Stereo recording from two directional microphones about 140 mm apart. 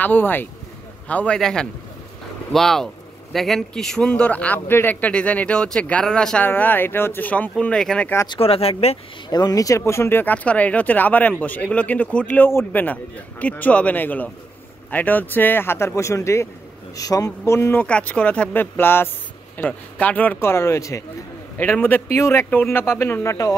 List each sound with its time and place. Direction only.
0.0 s a man's voice: 15° left (ahead or behind)
8.3 s speech: 45° left (ahead or behind)
9.3 s speech: 25° left (ahead or behind)